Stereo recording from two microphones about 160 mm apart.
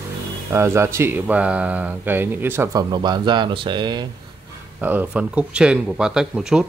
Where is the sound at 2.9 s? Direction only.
25° right (ahead or behind).